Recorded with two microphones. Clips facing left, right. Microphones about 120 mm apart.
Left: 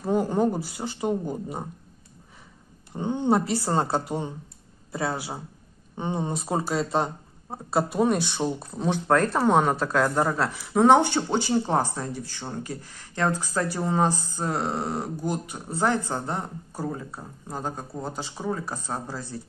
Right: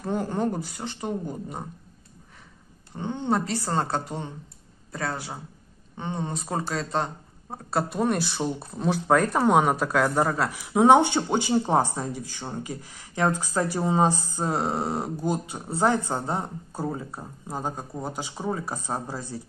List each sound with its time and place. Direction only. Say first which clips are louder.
0.0 s speech: left 4 dB; 5° left (ahead or behind)
3.0 s speech: left 3 dB; 10° left (ahead or behind); by 19.3 s 20° right (ahead or behind)